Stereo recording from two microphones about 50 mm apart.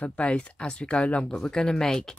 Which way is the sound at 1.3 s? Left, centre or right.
Centre.